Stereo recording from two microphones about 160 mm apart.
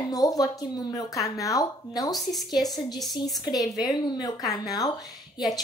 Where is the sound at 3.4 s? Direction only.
25° left (ahead or behind).